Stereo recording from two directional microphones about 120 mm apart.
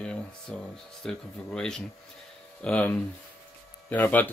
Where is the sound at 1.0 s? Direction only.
5° left (ahead or behind).